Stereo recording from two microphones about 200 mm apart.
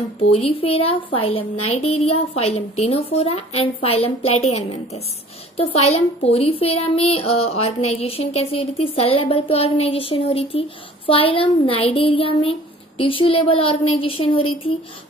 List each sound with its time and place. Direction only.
0.3 s speech: 30° left (ahead or behind)